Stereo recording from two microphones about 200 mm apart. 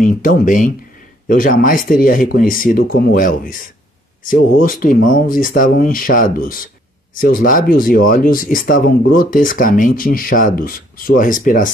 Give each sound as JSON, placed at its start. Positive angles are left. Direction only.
{"t": 0.0, "sound": "speech", "side_deg": 40}